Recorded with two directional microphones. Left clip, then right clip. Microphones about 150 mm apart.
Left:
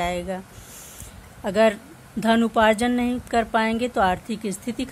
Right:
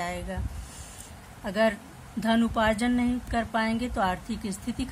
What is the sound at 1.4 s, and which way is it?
A woman's voice, 50° left (ahead or behind).